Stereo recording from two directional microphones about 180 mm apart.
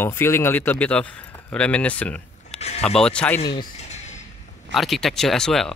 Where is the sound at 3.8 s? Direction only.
40° left (ahead or behind).